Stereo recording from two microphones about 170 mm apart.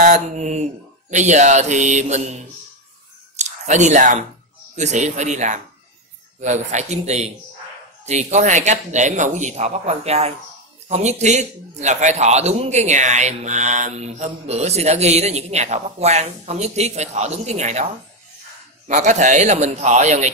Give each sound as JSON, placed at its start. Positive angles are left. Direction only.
{"t": 0.0, "sound": "speech", "side_deg": -45}
{"t": 3.3, "sound": "a sound", "side_deg": -45}
{"t": 4.7, "sound": "a man's voice", "side_deg": -45}
{"t": 18.9, "sound": "speech", "side_deg": -45}